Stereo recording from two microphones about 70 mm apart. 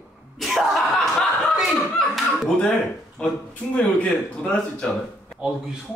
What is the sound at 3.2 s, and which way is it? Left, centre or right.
Speech, centre.